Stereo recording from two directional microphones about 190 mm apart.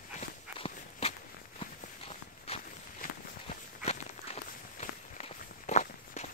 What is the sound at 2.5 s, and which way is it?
Walk, 30° left (ahead or behind).